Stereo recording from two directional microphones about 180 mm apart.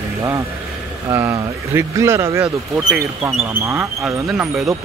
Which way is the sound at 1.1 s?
15° right (ahead or behind).